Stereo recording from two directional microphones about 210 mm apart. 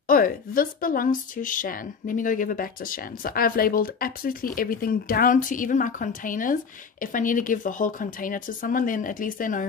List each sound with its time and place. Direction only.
0.1 s a woman's voice: 40° left (ahead or behind)